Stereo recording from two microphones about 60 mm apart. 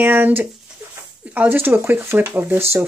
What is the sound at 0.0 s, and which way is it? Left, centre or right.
Speech, right.